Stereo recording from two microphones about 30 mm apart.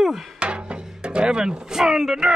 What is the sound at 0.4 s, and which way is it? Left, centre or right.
Music, right.